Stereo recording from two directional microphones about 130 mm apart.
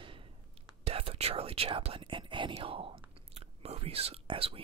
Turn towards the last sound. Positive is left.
turn(degrees=-45)  # may be behind; listen again after turning